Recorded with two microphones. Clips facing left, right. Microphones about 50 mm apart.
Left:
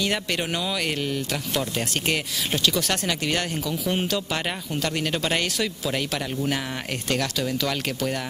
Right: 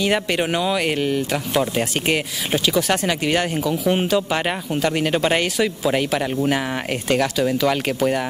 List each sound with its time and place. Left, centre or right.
0.0 s speech: centre